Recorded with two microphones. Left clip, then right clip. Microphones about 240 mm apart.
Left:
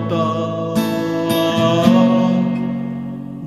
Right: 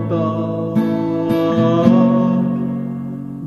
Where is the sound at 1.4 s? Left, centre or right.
Centre.